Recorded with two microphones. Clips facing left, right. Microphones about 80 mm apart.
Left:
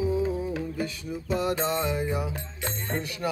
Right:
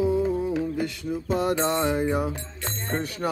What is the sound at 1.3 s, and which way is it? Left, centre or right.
Music, right.